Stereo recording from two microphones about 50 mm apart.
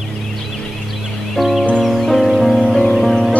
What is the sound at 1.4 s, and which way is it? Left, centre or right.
Music, centre.